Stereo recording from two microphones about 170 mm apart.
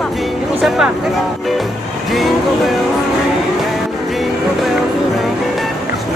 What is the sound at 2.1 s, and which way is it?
Music, centre (ahead or behind).